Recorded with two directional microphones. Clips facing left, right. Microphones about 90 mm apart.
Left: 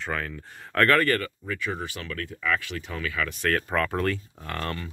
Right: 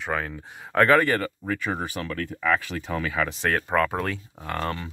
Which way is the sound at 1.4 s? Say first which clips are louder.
Right 3 dB; 40° right (ahead or behind).